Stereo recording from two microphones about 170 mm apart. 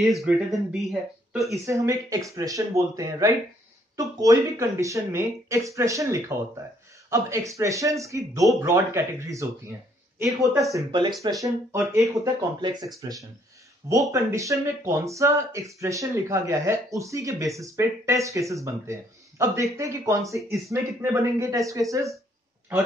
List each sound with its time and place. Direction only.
0.2 s speech: centre (ahead or behind)
1.5 s speech: 20° right (ahead or behind)